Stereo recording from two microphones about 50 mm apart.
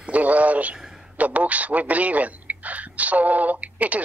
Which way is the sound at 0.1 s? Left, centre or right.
Right.